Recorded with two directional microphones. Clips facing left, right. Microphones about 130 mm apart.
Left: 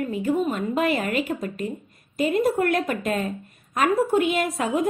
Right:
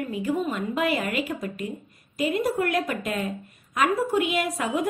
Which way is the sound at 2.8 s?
35° left (ahead or behind).